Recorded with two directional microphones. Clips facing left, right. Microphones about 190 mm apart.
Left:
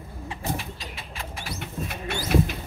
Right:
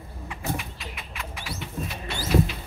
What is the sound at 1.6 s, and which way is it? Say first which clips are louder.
Bird: left 1 dB; 55° left (ahead or behind).